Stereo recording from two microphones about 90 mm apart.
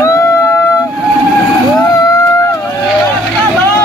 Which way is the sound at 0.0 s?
35° left (ahead or behind).